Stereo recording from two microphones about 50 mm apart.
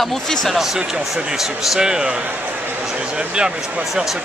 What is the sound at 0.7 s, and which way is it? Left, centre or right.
Speech, centre.